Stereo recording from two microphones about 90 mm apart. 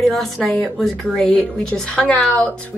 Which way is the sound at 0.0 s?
5° left (ahead or behind).